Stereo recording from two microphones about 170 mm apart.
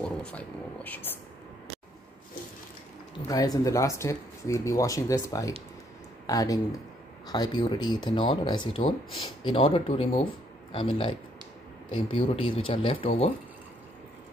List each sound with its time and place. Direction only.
0.0 s speech: 5° left (ahead or behind)
3.2 s speech: 20° left (ahead or behind)